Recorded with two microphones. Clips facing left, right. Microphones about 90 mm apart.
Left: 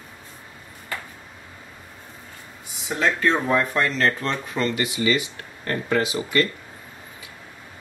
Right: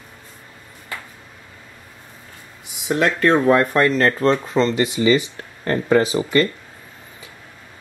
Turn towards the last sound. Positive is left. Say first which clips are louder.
# right 5 dB
turn(degrees=-30)  # may be behind; listen again after turning